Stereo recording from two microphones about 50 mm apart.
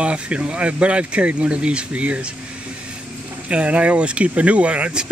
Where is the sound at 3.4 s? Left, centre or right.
Right.